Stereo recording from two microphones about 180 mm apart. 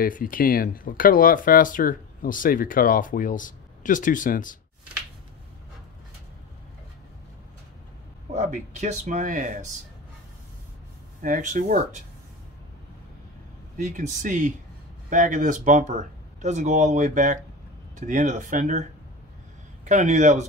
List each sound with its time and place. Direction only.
0.0 s speech: 50° left (ahead or behind)
8.4 s speech: 40° right (ahead or behind)
11.1 s speech: 45° right (ahead or behind)
13.7 s speech: 45° right (ahead or behind)